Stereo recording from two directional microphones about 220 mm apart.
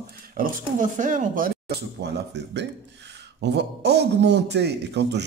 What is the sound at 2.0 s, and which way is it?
A man's voice, 50° right (ahead or behind).